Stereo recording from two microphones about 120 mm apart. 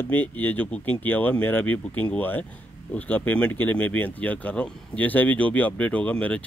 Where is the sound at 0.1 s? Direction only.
15° left (ahead or behind).